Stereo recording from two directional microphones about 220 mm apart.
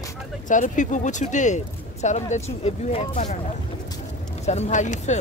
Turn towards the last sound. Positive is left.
turn(degrees=35)  # may be behind; listen again after turning